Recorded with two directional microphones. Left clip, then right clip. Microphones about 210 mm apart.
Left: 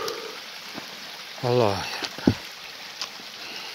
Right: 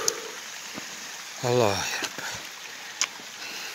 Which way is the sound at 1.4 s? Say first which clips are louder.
Left 1 dB; 10° left (ahead or behind).